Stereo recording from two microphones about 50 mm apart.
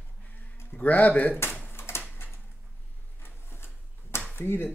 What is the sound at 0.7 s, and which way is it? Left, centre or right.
Speech, left.